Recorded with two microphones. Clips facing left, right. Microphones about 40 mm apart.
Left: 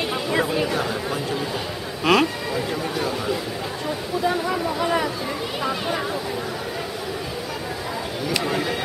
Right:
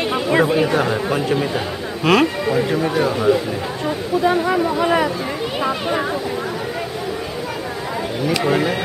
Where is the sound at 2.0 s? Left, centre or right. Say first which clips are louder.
Right 3 dB; centre.